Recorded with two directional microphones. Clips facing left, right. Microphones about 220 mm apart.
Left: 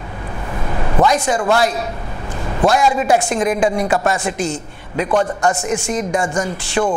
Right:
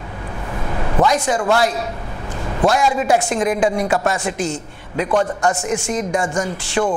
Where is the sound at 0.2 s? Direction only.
20° left (ahead or behind).